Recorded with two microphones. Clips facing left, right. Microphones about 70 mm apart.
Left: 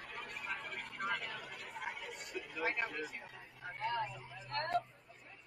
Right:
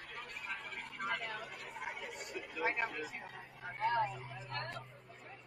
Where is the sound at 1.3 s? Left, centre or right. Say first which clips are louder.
Right 1 dB; centre; by 2.5 s right.